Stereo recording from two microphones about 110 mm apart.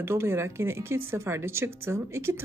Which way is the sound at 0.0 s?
25° right (ahead or behind).